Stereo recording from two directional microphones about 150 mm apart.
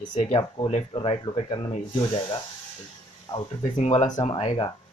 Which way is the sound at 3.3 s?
30° left (ahead or behind).